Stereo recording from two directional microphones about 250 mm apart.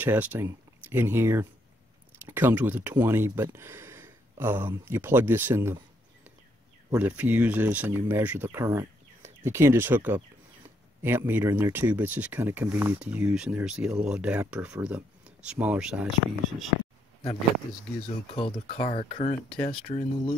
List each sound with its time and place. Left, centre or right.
0.0 s speech: centre
6.9 s speech: centre
18.3 s speech: left